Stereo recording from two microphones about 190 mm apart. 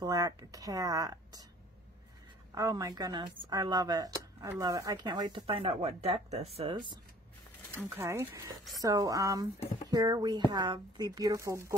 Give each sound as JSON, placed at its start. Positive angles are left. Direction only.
{"t": 0.0, "sound": "speech", "side_deg": -20}
{"t": 2.5, "sound": "speech", "side_deg": -20}
{"t": 7.7, "sound": "speech", "side_deg": -15}